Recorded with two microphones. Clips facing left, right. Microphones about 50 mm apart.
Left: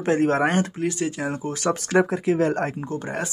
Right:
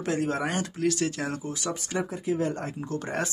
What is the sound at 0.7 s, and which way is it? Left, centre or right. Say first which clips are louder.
Speech: left 1 dB; left.